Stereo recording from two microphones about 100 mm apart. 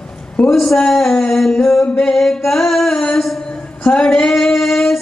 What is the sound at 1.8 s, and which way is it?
Music, 5° left (ahead or behind).